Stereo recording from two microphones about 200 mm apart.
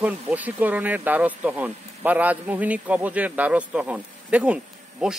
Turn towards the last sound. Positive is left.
turn(degrees=-5)  # may be behind; listen again after turning